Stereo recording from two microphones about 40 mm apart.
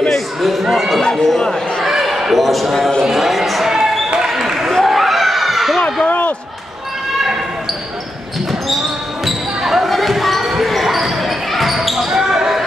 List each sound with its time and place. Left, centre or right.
0.4 s speech: centre
1.9 s speech: centre
4.3 s basketball bounce: centre
4.8 s a sound: centre
6.0 s a sound: left
9.2 s basketball bounce: centre